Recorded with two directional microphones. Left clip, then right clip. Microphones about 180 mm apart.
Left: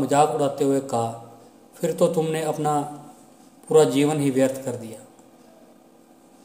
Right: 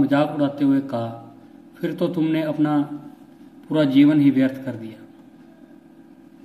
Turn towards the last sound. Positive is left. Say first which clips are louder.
# right 3 dB
turn(degrees=35)  # may be behind; listen again after turning